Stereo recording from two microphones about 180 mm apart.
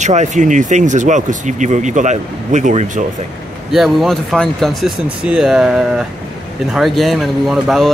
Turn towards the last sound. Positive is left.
turn(degrees=0)  # may be behind; listen again after turning